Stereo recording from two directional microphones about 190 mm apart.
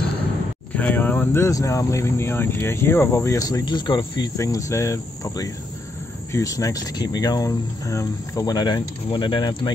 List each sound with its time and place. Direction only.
0.7 s speech: 10° left (ahead or behind); by 9.6 s 25° left (ahead or behind)